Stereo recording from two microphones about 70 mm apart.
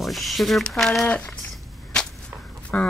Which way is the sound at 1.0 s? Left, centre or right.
Centre.